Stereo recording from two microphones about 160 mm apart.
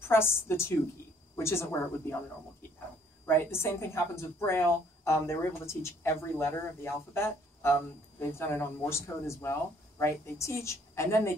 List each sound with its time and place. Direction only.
0.1 s a woman's voice: 15° left (ahead or behind)
3.5 s a woman's voice: 15° left (ahead or behind)